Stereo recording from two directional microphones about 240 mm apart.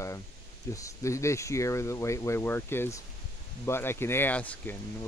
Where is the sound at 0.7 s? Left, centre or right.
Centre.